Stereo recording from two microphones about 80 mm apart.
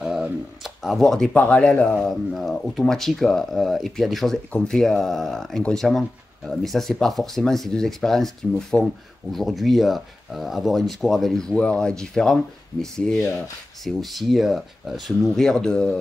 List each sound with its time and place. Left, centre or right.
0.0 s a sound: centre
1.4 s speech: centre
2.0 s speech: centre
4.5 s speech: centre
5.9 s speech: centre